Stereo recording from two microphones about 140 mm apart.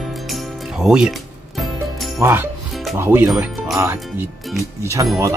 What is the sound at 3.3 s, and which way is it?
Speech, centre (ahead or behind).